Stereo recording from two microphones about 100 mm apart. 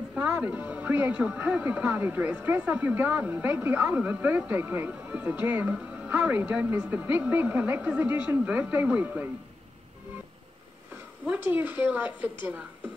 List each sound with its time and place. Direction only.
0.1 s a woman's voice: 10° right (ahead or behind)
11.2 s speech: 20° right (ahead or behind)